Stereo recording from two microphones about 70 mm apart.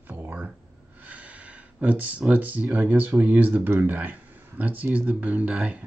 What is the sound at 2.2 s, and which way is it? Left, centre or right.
Speech, right.